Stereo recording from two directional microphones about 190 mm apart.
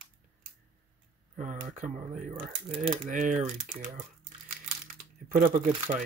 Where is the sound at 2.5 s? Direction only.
30° right (ahead or behind).